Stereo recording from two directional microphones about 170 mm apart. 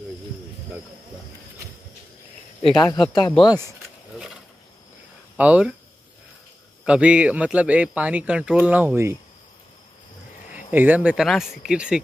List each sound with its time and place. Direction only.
2.8 s speech: 25° left (ahead or behind)
5.4 s a man's voice: 5° right (ahead or behind)
6.8 s a man's voice: 5° right (ahead or behind)
10.7 s a man's voice: 10° right (ahead or behind)